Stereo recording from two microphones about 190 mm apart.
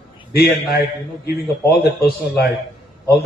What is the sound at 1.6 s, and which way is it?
Speech, 60° left (ahead or behind).